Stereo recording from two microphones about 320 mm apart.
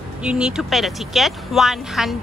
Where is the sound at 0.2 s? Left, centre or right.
Centre.